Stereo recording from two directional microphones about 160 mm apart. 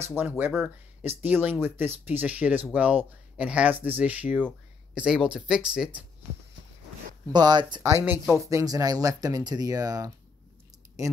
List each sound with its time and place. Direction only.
0.2 s speech: 10° right (ahead or behind)
7.3 s speech: 25° right (ahead or behind)
8.0 s speech: 5° right (ahead or behind)
8.4 s speech: 20° right (ahead or behind)